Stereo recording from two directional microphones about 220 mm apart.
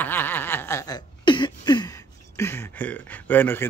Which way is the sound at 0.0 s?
10° left (ahead or behind).